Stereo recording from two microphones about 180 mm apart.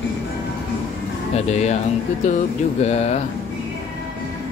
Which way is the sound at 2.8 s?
35° left (ahead or behind).